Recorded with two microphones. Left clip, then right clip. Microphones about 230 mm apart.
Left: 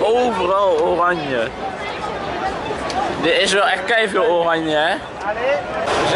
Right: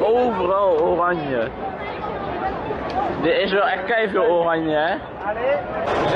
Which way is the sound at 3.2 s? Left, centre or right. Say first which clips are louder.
Left 3 dB; centre.